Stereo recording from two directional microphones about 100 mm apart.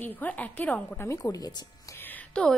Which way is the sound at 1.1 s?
30° left (ahead or behind).